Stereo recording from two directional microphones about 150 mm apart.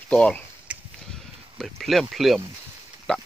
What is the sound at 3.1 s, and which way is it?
Pig, 5° left (ahead or behind).